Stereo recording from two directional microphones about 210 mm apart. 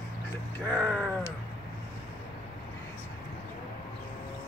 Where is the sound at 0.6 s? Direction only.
5° left (ahead or behind).